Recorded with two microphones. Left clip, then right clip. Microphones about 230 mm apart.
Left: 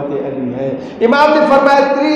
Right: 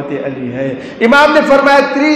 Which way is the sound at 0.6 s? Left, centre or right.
Right.